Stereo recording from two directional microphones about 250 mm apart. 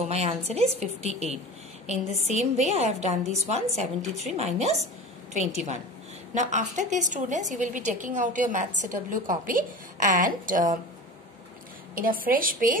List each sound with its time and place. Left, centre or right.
0.0 s a woman's voice: right
11.9 s a woman's voice: right